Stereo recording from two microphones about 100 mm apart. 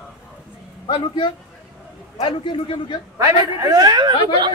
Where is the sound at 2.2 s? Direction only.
55° left (ahead or behind).